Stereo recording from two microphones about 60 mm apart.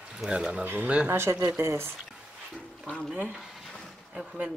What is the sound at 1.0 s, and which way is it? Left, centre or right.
Speech, right.